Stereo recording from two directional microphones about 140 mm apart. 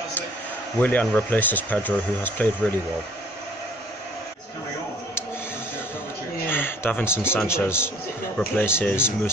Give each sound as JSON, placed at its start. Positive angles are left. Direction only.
{"t": 0.7, "sound": "speech", "side_deg": 10}
{"t": 6.5, "sound": "a man's voice", "side_deg": 15}